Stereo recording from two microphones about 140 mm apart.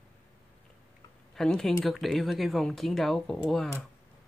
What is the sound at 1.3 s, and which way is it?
Speech, 5° left (ahead or behind).